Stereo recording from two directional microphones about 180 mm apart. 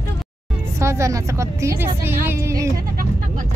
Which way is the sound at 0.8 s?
15° right (ahead or behind).